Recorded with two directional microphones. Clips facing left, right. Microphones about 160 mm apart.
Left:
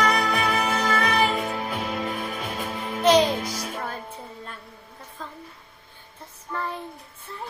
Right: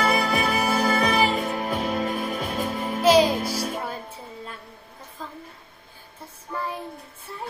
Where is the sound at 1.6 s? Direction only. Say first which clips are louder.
Right 3 dB; 25° right (ahead or behind).